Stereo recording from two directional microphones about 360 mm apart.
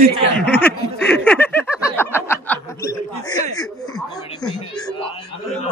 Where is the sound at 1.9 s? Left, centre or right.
Centre.